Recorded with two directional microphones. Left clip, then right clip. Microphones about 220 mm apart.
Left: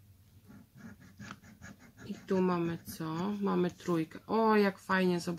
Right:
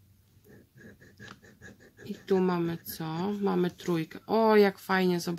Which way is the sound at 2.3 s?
35° right (ahead or behind).